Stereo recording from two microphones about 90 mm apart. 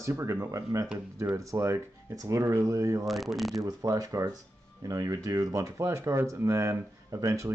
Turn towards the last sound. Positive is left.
turn(degrees=-40)  # may be behind; listen again after turning